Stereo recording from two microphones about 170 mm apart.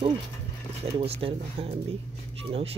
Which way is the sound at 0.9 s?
35° right (ahead or behind).